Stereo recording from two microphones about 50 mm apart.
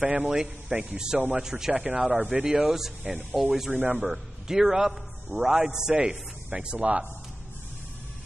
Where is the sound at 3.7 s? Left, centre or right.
Right.